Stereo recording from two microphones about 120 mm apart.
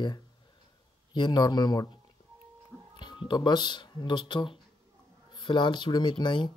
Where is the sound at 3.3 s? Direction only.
35° left (ahead or behind).